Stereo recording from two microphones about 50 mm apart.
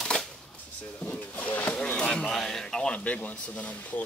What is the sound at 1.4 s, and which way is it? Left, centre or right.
Speech, left.